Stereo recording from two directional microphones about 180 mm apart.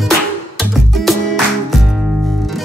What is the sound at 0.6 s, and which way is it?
Music, centre (ahead or behind).